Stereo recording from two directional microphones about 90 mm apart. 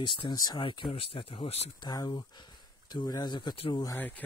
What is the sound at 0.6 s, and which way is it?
Speech, 65° left (ahead or behind).